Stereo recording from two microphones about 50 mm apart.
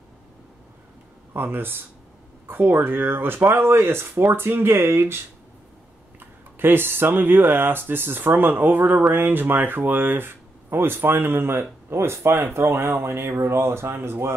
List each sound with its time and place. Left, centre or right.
1.3 s speech: right